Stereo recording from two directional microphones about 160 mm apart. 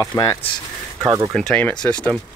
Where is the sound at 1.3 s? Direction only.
5° left (ahead or behind).